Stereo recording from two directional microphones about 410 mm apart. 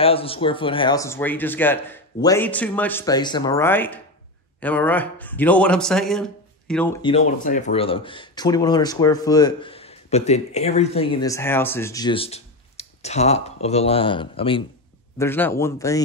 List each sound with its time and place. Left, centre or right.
0.0 s a man's voice: centre